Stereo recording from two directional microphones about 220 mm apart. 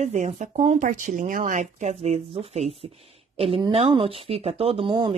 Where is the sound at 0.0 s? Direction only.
35° right (ahead or behind).